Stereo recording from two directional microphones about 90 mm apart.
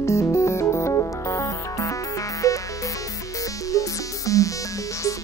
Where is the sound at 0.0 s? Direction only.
35° left (ahead or behind).